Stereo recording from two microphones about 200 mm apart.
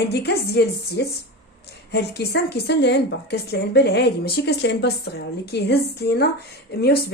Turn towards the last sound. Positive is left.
turn(degrees=50)  # may be behind; listen again after turning